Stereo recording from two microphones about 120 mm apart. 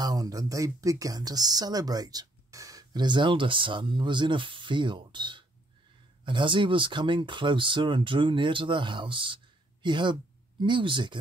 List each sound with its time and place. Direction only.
0.0 s speech: 35° right (ahead or behind)